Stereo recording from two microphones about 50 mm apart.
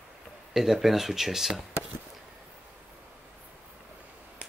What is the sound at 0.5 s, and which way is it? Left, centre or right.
Speech, centre.